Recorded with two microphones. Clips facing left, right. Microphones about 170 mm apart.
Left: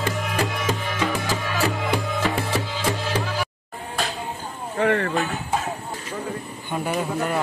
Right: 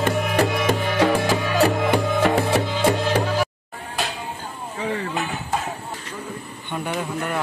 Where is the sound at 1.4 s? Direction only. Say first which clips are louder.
Right 6 dB; 45° right (ahead or behind).